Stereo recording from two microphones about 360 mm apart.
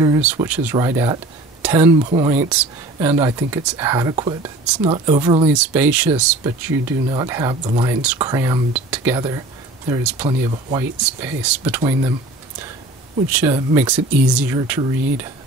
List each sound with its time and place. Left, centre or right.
0.0 s speech: centre
13.3 s speech: centre